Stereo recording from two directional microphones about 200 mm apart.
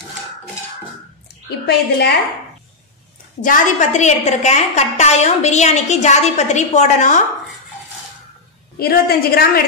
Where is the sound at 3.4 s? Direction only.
40° left (ahead or behind).